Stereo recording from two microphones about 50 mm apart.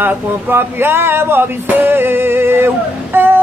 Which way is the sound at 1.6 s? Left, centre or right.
Right.